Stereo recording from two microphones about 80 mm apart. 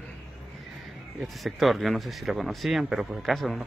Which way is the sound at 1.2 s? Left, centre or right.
Centre.